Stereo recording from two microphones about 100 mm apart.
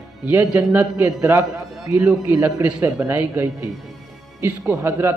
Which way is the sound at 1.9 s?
30° right (ahead or behind).